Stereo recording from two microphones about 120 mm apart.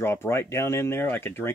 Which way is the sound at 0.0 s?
20° left (ahead or behind).